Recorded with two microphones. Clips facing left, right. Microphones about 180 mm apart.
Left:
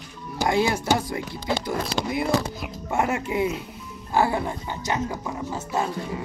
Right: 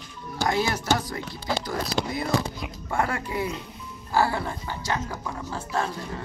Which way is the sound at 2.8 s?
20° left (ahead or behind).